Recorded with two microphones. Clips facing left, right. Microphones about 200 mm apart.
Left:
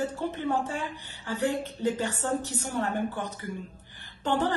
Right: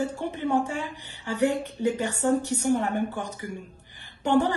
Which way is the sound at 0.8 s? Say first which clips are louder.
Right 2 dB; 15° right (ahead or behind).